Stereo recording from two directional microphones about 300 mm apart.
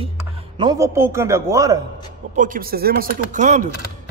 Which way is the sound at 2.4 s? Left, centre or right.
Right.